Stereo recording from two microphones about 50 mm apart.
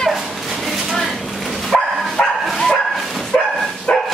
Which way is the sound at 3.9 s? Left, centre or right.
Left.